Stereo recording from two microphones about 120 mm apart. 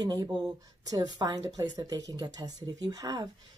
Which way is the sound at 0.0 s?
35° right (ahead or behind).